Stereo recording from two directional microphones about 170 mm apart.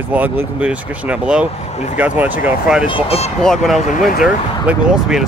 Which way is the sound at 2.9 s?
35° left (ahead or behind).